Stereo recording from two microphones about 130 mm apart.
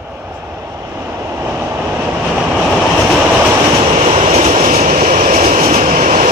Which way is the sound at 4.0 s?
50° right (ahead or behind).